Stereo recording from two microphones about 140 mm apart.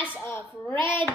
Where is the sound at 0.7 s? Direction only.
35° right (ahead or behind).